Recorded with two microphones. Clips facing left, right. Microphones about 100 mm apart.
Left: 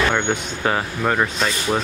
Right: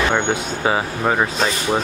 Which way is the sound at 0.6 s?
10° right (ahead or behind).